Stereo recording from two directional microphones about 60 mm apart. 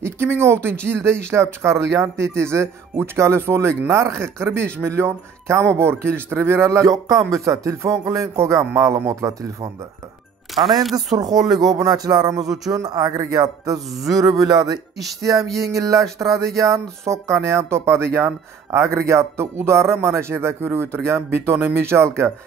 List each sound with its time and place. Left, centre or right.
0.0 s speech: right
10.5 s speech: centre
11.1 s speech: right
14.1 s speech: right
15.7 s speech: right
16.5 s speech: right
18.9 s speech: right